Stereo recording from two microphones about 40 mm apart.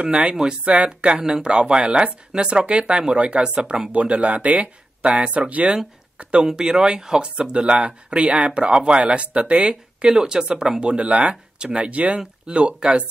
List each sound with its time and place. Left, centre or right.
0.2 s speech: centre
3.9 s speech: right
5.5 s speech: right
6.4 s speech: centre